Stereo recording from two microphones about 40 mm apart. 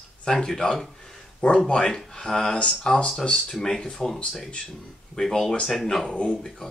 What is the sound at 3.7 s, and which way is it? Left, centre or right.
Speech, centre.